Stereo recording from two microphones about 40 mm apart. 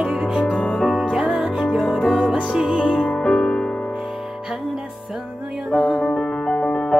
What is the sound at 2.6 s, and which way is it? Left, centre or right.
Music, right.